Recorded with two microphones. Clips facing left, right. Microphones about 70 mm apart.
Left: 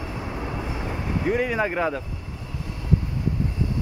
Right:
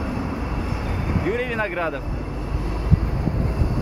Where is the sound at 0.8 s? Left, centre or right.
Centre.